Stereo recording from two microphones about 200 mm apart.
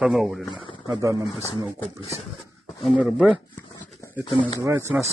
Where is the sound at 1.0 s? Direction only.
15° right (ahead or behind).